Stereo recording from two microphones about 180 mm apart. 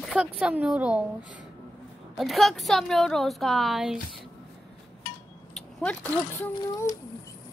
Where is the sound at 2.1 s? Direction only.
Centre (ahead or behind).